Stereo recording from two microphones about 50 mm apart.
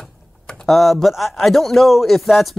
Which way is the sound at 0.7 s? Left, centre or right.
Centre.